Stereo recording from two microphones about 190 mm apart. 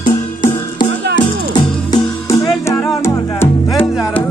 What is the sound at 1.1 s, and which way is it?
Music, 20° left (ahead or behind).